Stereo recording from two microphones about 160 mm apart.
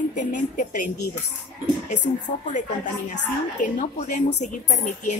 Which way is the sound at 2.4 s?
50° left (ahead or behind).